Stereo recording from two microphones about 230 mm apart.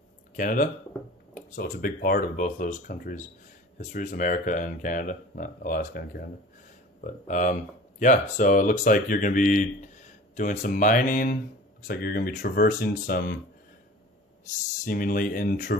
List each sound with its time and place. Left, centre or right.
0.4 s speech: left
14.9 s speech: left